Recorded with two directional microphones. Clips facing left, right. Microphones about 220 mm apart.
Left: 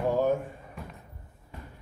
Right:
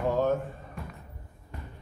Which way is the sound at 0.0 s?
10° left (ahead or behind).